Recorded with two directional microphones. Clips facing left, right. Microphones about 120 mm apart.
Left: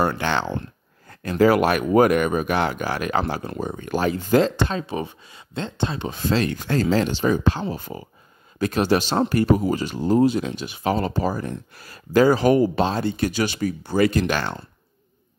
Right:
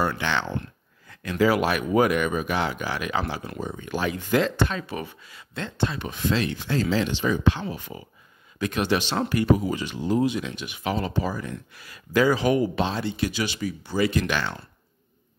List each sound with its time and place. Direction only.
0.0 s speech: 40° left (ahead or behind)